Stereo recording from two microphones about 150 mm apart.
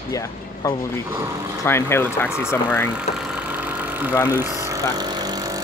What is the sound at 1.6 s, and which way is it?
Speech, 15° left (ahead or behind).